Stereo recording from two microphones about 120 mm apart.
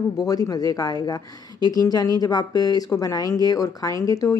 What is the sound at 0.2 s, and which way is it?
A woman's voice, 30° left (ahead or behind).